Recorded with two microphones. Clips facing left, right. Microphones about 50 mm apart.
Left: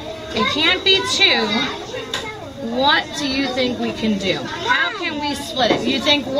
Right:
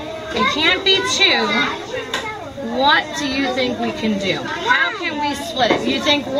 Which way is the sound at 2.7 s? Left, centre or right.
Centre.